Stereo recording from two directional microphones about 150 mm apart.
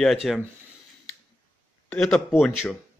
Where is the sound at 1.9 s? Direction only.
5° left (ahead or behind).